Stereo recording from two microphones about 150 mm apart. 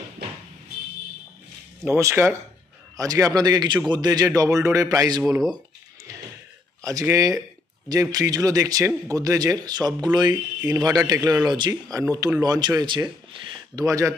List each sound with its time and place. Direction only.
1.9 s speech: 15° right (ahead or behind)
6.8 s speech: 20° right (ahead or behind)